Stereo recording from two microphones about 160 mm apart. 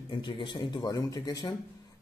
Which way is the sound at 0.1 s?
30° left (ahead or behind).